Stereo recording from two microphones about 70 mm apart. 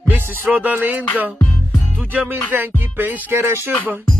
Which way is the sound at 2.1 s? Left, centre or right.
Right.